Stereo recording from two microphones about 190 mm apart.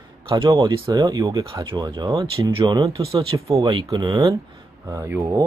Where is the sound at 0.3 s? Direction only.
25° right (ahead or behind).